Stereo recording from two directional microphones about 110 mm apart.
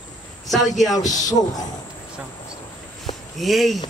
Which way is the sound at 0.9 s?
35° left (ahead or behind).